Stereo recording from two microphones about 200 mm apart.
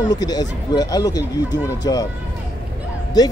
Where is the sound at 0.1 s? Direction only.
20° left (ahead or behind).